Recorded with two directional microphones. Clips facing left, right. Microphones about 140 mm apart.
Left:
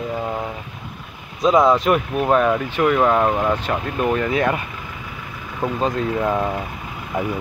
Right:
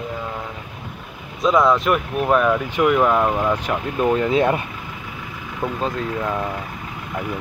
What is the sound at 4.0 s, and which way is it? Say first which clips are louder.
Speech: right 3 dB; 20° right (ahead or behind).